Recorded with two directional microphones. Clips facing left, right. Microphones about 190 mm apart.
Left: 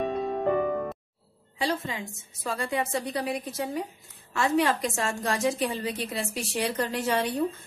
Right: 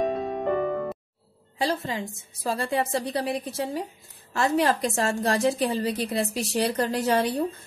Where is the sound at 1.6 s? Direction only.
35° right (ahead or behind).